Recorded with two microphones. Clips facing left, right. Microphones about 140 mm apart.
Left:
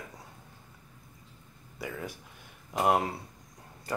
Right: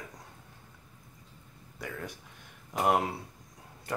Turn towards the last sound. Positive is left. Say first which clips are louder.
# left 1 dB
turn(degrees=0)  # may be behind; listen again after turning